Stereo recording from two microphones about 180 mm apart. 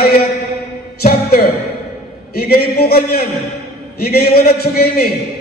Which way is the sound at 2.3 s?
55° left (ahead or behind).